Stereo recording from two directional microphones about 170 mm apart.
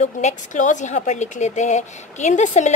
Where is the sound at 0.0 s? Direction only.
45° left (ahead or behind).